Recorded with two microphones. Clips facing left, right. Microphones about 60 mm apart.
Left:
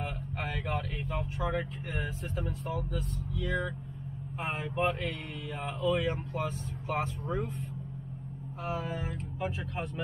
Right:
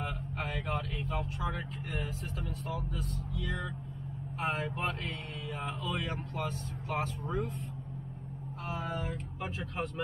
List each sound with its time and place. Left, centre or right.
1.0 s speech: centre
1.5 s speech: left
4.4 s speech: left
5.5 s speech: centre
9.4 s speech: centre